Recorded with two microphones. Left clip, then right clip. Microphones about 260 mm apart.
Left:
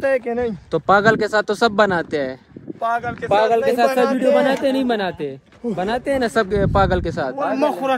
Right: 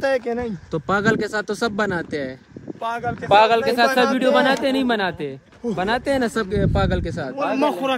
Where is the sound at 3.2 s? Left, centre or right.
Right.